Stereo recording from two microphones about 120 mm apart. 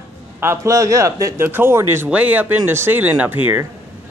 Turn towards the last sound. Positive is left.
turn(degrees=-15)  # may be behind; listen again after turning